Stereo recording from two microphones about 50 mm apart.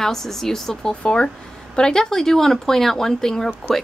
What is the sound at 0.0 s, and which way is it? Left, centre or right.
Speech, centre.